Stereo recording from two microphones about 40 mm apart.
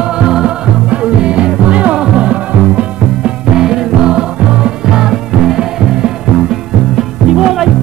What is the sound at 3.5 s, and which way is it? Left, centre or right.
Music, centre.